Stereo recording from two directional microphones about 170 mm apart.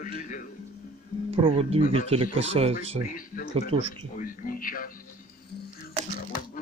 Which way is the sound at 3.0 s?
55° left (ahead or behind).